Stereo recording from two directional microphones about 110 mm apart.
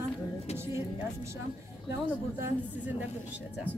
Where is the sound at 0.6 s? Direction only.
25° right (ahead or behind).